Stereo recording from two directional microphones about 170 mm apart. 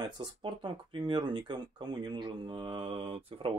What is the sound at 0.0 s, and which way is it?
Speech, 25° right (ahead or behind).